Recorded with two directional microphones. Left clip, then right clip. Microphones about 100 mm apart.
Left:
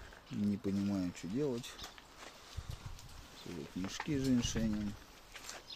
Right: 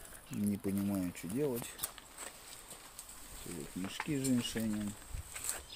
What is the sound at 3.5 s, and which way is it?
Stir, 10° right (ahead or behind).